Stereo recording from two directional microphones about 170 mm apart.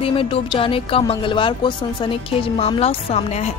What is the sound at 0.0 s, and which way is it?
Speech, 30° left (ahead or behind).